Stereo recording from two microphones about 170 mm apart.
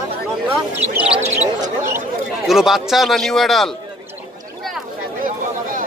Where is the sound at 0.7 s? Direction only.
10° right (ahead or behind).